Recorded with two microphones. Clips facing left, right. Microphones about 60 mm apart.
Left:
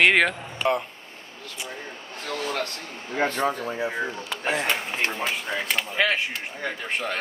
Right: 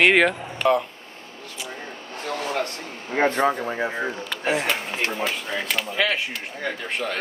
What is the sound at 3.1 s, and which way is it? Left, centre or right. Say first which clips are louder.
Speech: right 4 dB; right.